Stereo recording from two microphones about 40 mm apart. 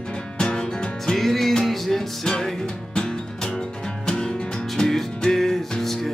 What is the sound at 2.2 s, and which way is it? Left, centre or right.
Music, centre.